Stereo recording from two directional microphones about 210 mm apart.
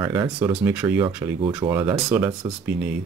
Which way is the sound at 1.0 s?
20° right (ahead or behind).